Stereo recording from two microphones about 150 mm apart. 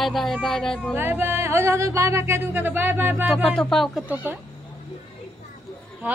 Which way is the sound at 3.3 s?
Centre (ahead or behind).